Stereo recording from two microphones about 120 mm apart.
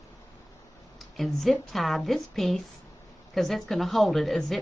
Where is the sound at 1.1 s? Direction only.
Centre (ahead or behind).